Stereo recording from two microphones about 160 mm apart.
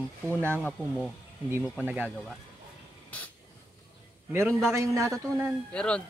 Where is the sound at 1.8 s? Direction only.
10° right (ahead or behind).